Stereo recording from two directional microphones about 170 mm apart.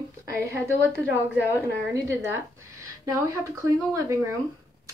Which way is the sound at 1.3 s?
15° right (ahead or behind).